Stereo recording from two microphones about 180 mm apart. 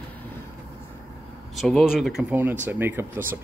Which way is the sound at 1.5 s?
Centre (ahead or behind).